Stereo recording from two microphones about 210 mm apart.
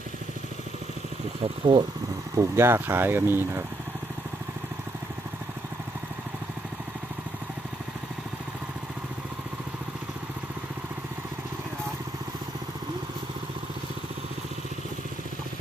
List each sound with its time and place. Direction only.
1.6 s speech: 25° right (ahead or behind)
2.3 s speech: 10° right (ahead or behind)